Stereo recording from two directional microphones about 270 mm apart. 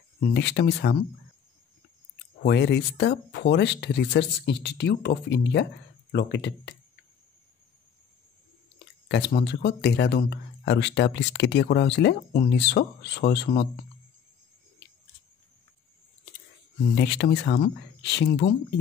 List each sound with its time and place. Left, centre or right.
0.2 s speech: left
2.4 s speech: left
9.1 s speech: left
16.9 s speech: left